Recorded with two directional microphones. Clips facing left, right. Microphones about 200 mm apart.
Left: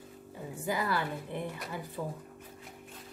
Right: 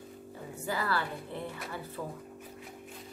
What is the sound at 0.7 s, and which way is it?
A woman's voice, 15° left (ahead or behind).